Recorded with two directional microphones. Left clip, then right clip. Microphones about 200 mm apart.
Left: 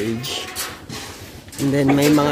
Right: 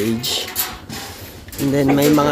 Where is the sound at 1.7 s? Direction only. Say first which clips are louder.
Right 1 dB; centre (ahead or behind).